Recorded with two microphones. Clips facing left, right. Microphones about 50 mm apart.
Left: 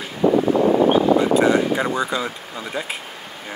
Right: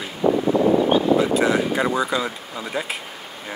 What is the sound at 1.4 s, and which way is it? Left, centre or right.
Speech, centre.